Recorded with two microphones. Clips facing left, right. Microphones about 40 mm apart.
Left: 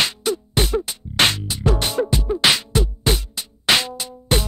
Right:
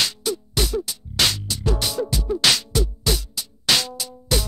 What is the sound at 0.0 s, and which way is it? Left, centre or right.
Music, left.